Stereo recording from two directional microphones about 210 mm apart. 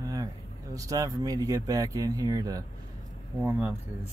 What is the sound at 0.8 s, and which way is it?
Speech, 15° right (ahead or behind).